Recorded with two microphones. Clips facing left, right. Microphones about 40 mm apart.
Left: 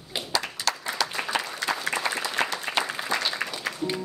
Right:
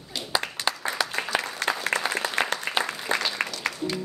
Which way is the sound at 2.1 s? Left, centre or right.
Right.